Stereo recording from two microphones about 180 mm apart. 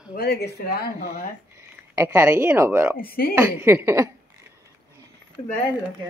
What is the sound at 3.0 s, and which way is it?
Speech, 55° left (ahead or behind).